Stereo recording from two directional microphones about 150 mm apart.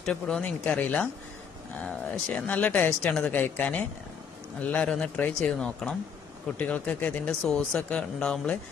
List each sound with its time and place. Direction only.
0.0 s speech: 5° left (ahead or behind)